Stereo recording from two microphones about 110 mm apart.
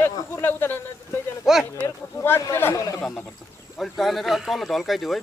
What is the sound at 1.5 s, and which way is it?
Speech, 5° right (ahead or behind).